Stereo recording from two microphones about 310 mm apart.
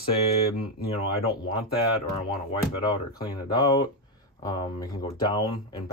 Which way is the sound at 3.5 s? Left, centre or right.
Centre.